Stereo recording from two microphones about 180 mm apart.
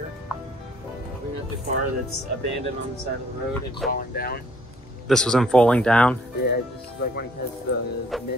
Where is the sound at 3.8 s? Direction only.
55° left (ahead or behind).